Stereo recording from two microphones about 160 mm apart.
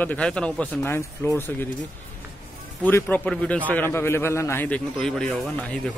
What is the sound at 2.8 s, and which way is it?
Speech, 10° left (ahead or behind).